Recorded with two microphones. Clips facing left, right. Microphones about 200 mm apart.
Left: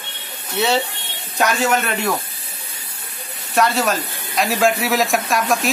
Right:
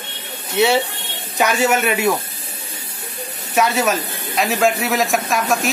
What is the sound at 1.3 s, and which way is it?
Speech, 5° right (ahead or behind).